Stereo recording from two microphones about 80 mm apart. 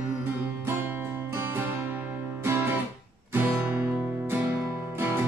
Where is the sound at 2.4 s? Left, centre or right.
Right.